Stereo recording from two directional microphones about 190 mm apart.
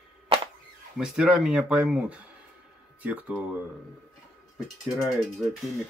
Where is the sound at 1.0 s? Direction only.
5° right (ahead or behind).